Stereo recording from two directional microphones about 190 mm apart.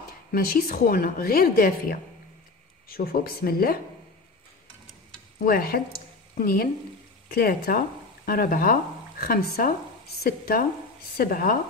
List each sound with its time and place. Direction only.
0.3 s a woman's voice: 50° left (ahead or behind)
5.4 s a woman's voice: 50° left (ahead or behind)